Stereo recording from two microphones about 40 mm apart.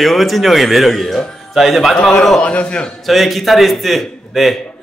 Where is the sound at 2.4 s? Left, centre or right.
Left.